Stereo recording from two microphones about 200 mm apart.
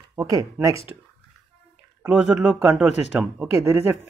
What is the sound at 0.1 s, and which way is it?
Speech, 15° right (ahead or behind).